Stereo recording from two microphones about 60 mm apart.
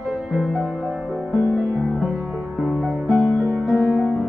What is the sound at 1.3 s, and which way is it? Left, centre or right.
Music, left.